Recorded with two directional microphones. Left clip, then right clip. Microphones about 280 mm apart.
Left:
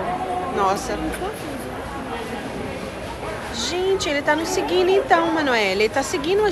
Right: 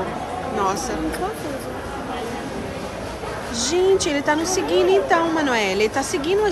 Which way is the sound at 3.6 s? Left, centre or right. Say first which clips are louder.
Right 4 dB; centre.